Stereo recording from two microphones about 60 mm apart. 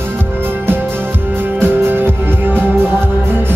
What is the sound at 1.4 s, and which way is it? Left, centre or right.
Music, right.